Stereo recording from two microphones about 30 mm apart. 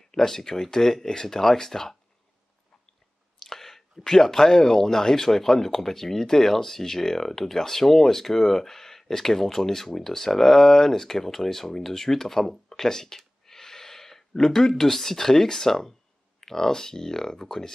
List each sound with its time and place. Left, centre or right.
0.1 s speech: centre
3.3 s speech: centre